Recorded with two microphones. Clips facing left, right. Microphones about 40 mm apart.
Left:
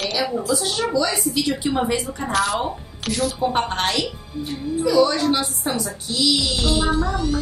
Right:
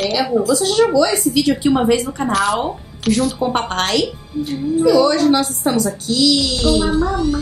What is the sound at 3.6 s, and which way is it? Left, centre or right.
Speech, right.